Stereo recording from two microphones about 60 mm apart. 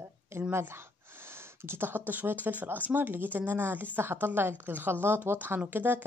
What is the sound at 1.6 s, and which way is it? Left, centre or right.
Speech, right.